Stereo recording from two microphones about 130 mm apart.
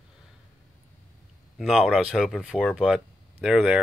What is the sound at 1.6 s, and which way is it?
Speech, 5° right (ahead or behind).